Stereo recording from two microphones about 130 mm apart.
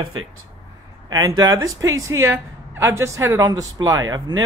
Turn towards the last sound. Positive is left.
turn(degrees=-30)  # may be behind; listen again after turning